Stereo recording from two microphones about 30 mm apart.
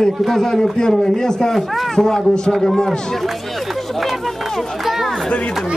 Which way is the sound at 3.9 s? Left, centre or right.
Centre.